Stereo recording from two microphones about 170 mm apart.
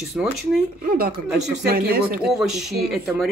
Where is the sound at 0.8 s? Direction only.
55° right (ahead or behind).